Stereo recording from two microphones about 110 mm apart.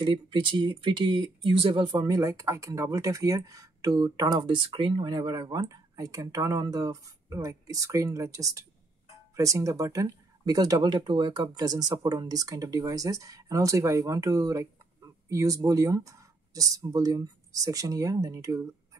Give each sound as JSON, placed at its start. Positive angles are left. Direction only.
{"t": 0.0, "sound": "speech", "side_deg": -50}